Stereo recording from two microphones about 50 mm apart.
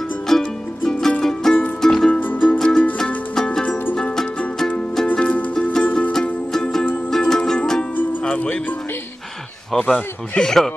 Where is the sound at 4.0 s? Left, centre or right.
Centre.